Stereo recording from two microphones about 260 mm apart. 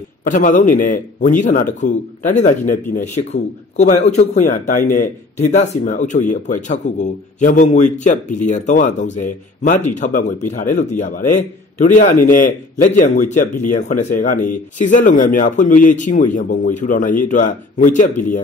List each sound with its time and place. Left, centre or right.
0.2 s speech: left